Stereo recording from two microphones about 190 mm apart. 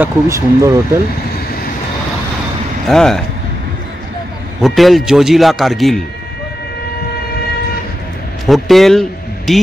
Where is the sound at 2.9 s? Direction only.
Centre (ahead or behind).